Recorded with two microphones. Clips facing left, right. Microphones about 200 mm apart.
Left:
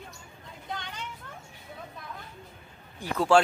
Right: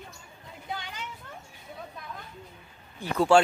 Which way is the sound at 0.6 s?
5° right (ahead or behind).